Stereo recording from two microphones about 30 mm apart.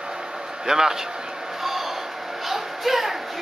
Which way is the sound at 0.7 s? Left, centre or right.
Centre.